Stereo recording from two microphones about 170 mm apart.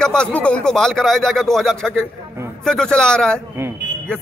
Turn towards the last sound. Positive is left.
turn(degrees=5)  # may be behind; listen again after turning